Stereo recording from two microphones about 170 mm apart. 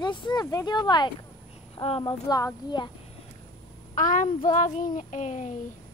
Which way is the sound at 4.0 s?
50° left (ahead or behind).